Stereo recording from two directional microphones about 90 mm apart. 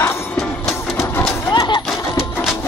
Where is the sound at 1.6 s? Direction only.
60° left (ahead or behind).